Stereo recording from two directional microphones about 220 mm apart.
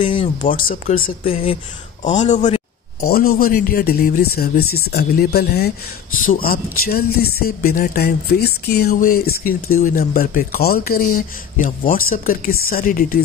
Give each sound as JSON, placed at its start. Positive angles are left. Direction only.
{"t": 0.0, "sound": "speech", "side_deg": 25}
{"t": 0.7, "sound": "speech", "side_deg": 40}
{"t": 1.0, "sound": "speech", "side_deg": 25}